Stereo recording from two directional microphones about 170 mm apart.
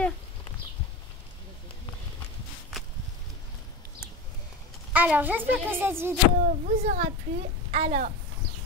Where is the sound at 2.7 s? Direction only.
Centre (ahead or behind).